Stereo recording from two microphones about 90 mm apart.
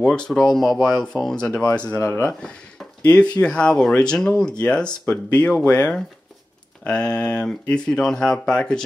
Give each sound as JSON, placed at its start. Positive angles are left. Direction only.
{"t": 0.0, "sound": "speech", "side_deg": 10}
{"t": 2.0, "sound": "speech", "side_deg": 25}
{"t": 3.1, "sound": "speech", "side_deg": 10}
{"t": 6.9, "sound": "speech", "side_deg": 10}